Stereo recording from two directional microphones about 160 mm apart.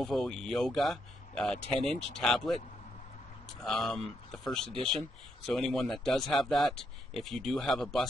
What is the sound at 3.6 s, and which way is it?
Speech, centre (ahead or behind).